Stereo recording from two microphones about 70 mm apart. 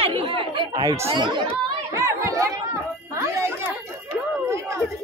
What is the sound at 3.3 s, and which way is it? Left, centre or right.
Chatter, right.